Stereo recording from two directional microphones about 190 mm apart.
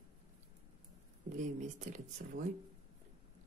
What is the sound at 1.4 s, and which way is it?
Speech, 40° right (ahead or behind).